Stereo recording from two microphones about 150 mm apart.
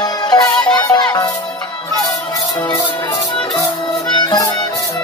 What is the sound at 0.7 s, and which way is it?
Speech, 30° left (ahead or behind).